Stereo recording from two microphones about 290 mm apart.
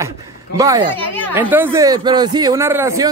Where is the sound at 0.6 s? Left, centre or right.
Centre.